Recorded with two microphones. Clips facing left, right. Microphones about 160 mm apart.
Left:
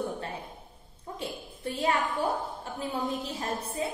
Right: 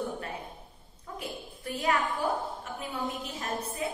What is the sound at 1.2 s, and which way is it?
A woman's voice, 30° left (ahead or behind).